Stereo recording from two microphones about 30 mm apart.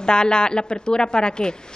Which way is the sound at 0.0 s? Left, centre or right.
Left.